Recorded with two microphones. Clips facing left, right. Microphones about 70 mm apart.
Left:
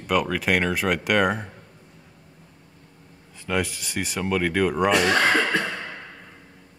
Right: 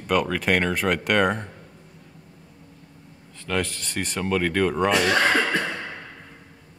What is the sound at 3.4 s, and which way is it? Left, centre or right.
Speech, centre.